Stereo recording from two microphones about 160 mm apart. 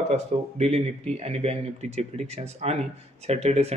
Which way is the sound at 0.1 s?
40° right (ahead or behind).